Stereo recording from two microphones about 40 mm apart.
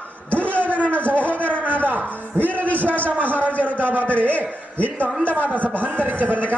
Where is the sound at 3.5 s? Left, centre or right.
Left.